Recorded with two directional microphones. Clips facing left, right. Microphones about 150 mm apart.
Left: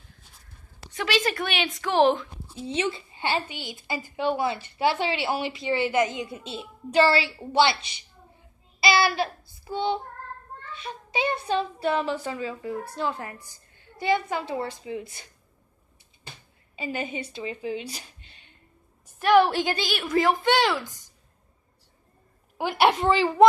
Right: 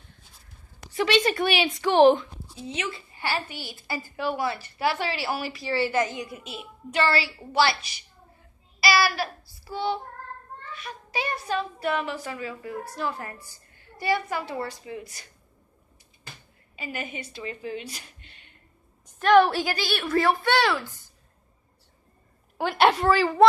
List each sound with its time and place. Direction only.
0.9 s a woman's voice: centre (ahead or behind)
2.6 s a woman's voice: 30° left (ahead or behind)
16.3 s a sound: 25° left (ahead or behind)
19.0 s a woman's voice: 10° left (ahead or behind)
22.6 s a woman's voice: 15° left (ahead or behind)